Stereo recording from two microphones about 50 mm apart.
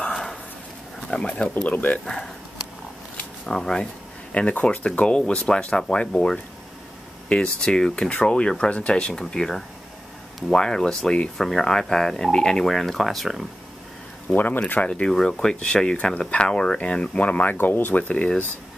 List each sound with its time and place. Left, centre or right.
0.1 s a sound: centre
1.3 s speech: left
2.0 s speech: centre
3.4 s speech: centre
4.3 s speech: left; by 13.5 s centre
14.3 s speech: left
14.6 s speech: left
14.9 s speech: centre
17.6 s speech: left